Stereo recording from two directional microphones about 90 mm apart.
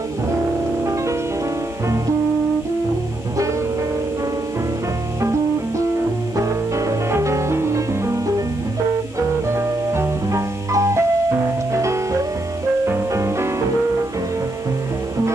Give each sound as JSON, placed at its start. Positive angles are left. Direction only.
{"t": 6.3, "sound": "music", "side_deg": -35}
{"t": 9.5, "sound": "music", "side_deg": -30}